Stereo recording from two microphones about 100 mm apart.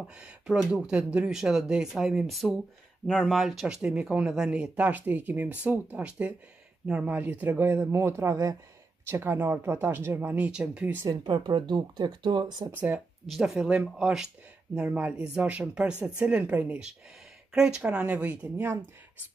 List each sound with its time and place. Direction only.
0.2 s speech: 5° right (ahead or behind)
11.2 s speech: 55° right (ahead or behind)
12.7 s speech: 15° right (ahead or behind)